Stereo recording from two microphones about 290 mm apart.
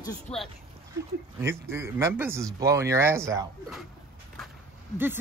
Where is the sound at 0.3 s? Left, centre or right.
Centre.